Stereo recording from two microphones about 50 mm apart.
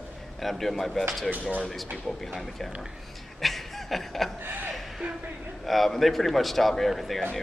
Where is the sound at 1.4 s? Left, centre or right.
Left.